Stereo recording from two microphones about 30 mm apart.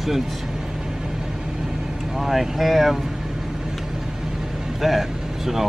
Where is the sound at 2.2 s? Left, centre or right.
Centre.